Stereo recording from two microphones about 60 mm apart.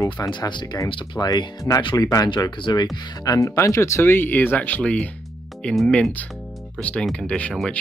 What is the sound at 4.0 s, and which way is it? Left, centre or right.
Speech, left.